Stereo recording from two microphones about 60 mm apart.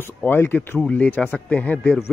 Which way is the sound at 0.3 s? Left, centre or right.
Left.